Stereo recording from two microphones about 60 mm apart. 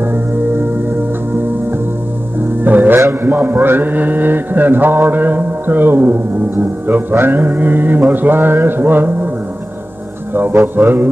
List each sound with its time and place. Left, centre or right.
0.0 s music: right
3.1 s mantra: right
10.8 s mantra: right